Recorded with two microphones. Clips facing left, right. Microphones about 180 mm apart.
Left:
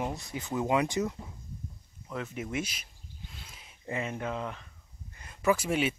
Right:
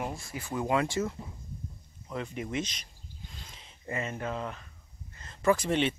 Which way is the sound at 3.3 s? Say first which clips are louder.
Right 1 dB; 5° left (ahead or behind).